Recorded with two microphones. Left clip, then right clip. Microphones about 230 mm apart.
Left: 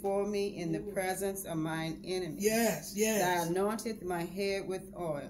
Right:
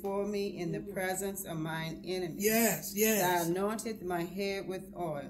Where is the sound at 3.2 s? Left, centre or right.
Centre.